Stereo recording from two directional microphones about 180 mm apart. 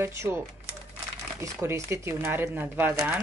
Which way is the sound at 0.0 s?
15° right (ahead or behind).